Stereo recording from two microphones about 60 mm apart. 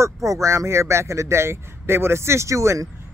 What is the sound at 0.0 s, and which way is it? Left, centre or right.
Speech, right.